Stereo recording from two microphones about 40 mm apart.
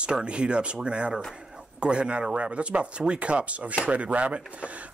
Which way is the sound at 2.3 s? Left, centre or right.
Right.